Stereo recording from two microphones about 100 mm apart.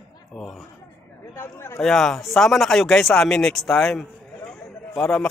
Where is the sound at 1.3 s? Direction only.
30° left (ahead or behind).